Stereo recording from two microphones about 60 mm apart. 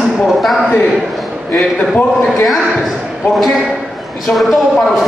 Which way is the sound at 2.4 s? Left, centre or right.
Centre.